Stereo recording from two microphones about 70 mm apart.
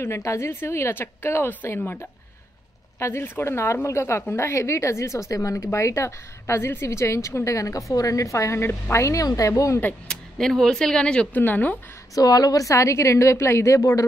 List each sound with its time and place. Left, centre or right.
0.0 s a woman's voice: left
3.0 s a woman's voice: left
10.0 s speech: centre
11.3 s speech: left
12.2 s a woman's voice: left